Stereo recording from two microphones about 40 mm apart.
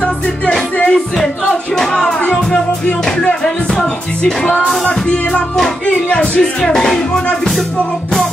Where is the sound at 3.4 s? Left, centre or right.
Centre.